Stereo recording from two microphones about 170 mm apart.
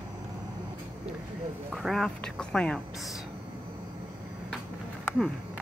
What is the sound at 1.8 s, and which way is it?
Speech, centre (ahead or behind).